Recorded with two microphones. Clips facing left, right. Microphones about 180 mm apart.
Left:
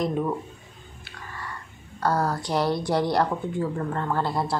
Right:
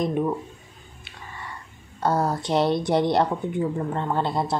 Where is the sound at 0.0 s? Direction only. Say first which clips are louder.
Right 2 dB; 20° right (ahead or behind).